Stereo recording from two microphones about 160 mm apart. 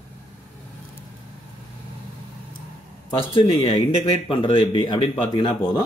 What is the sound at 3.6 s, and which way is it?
Speech, 30° left (ahead or behind).